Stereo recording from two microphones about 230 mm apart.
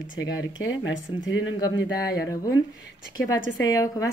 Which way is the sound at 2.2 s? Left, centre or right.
Centre.